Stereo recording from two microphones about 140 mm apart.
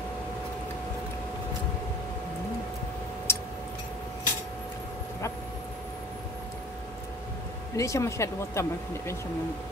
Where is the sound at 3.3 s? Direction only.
20° left (ahead or behind).